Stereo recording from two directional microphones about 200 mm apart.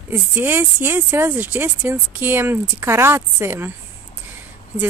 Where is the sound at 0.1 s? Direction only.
10° right (ahead or behind).